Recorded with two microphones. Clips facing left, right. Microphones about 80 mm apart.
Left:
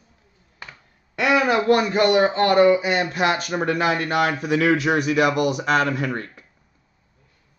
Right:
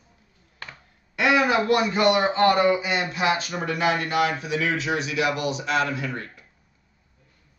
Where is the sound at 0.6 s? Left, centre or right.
Centre.